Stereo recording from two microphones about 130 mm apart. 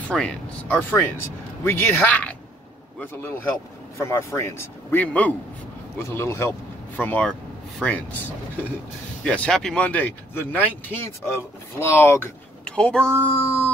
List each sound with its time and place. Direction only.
0.1 s speech: 5° left (ahead or behind)
0.7 s speech: 20° left (ahead or behind)
7.0 s speech: 10° left (ahead or behind)
9.2 s speech: 10° left (ahead or behind)
12.6 s speech: 5° left (ahead or behind)
13.4 s speech: 20° left (ahead or behind)